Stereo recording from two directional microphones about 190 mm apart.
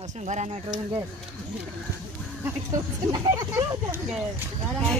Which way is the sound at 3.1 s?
15° right (ahead or behind).